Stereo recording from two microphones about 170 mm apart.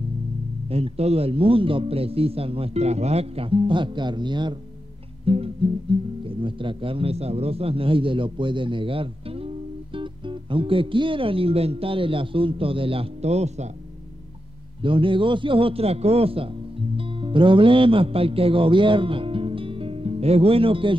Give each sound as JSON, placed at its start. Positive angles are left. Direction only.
{"t": 0.7, "sound": "a man's voice", "side_deg": -35}
{"t": 5.2, "sound": "music", "side_deg": -35}
{"t": 6.2, "sound": "a man's voice", "side_deg": -30}
{"t": 14.8, "sound": "a man's voice", "side_deg": -30}